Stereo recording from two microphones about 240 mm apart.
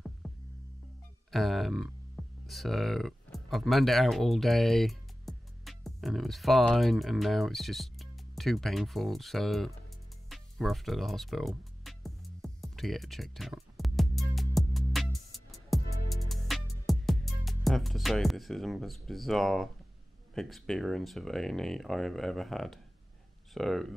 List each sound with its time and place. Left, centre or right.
0.2 s music: centre
1.3 s speech: centre
10.3 s music: centre
20.3 s speech: centre